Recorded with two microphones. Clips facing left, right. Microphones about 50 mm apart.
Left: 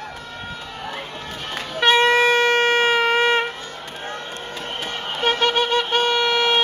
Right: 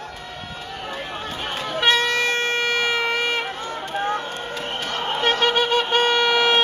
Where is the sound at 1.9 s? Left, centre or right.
Centre.